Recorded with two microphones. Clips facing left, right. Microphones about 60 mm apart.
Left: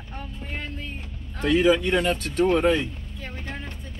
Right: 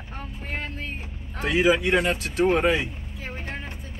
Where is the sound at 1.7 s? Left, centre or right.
Right.